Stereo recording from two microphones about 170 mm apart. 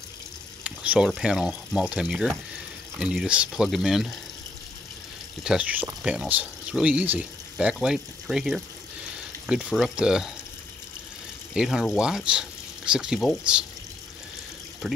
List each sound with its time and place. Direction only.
0.7 s speech: 5° right (ahead or behind)
5.4 s speech: 5° right (ahead or behind)
9.7 s speech: centre (ahead or behind)
11.5 s speech: 5° right (ahead or behind)